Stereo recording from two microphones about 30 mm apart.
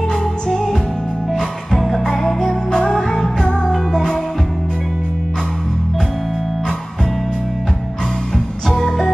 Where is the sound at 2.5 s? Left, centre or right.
Left.